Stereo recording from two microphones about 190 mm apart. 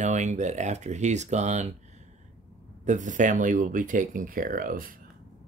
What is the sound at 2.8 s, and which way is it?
Speech, 40° right (ahead or behind).